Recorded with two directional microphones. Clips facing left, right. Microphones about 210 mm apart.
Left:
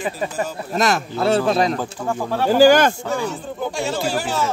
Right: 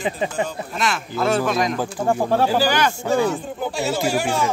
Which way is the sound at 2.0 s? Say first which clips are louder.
Right 7 dB; 25° right (ahead or behind).